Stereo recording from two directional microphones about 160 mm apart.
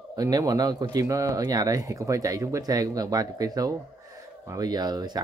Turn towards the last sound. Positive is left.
turn(degrees=-25)  # may be behind; listen again after turning